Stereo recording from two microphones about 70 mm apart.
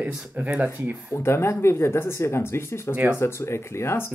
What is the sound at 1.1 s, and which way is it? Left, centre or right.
Speech, left.